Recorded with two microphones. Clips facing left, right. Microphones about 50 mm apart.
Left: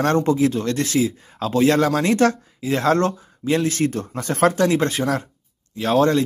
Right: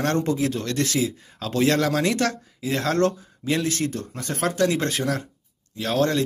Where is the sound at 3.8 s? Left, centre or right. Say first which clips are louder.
Left 5 dB; left.